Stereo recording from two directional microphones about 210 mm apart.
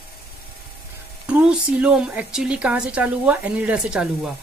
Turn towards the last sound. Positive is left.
turn(degrees=-5)  # may be behind; listen again after turning